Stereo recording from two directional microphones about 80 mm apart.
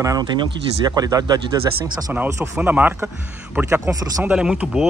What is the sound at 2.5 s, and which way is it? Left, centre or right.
Speech, right.